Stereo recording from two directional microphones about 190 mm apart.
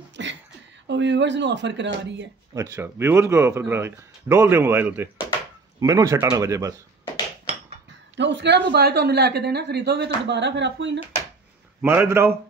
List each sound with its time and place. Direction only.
0.2 s a sound: 70° right (ahead or behind)
0.8 s speech: 70° right (ahead or behind)
2.5 s a man's voice: 15° right (ahead or behind)
8.2 s speech: 70° right (ahead or behind)
11.8 s speech: 10° right (ahead or behind)